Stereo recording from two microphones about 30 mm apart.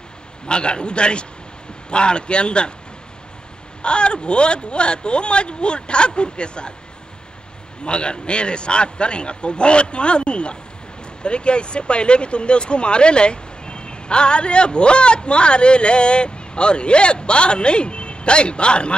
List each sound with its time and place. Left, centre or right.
0.5 s speech: left
3.8 s speech: left
7.8 s speech: left